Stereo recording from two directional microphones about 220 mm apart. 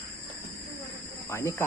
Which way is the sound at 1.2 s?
10° left (ahead or behind).